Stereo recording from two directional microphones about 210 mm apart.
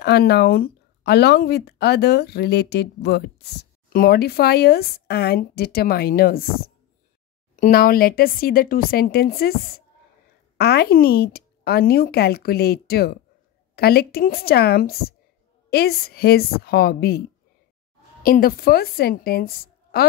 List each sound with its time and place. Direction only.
0.0 s speech: 50° left (ahead or behind)
7.6 s speech: 45° left (ahead or behind)
18.2 s speech: 45° left (ahead or behind)